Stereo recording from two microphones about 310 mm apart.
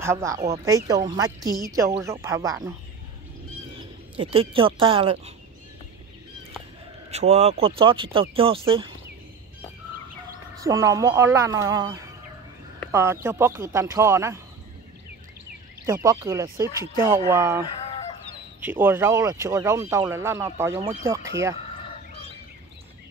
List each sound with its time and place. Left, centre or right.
0.0 s speech: centre
4.2 s speech: centre
7.1 s speech: centre
10.6 s speech: centre
15.8 s speech: centre